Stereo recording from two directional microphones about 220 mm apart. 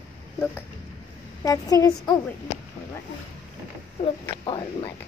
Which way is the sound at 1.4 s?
15° left (ahead or behind).